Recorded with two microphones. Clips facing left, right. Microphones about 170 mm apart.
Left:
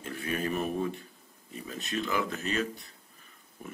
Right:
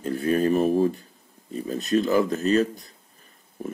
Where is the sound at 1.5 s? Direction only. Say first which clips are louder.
Right 12 dB; 40° right (ahead or behind).